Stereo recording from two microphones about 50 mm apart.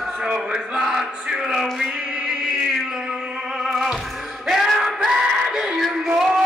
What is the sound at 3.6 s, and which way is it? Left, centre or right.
Music, centre.